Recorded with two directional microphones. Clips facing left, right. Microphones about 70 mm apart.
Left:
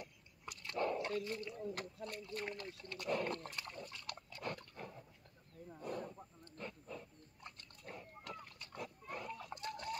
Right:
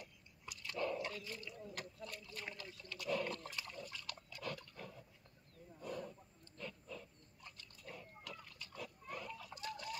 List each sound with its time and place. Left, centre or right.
0.0 s dog: left
1.8 s speech: left
6.5 s wild animals: left
7.4 s pig: left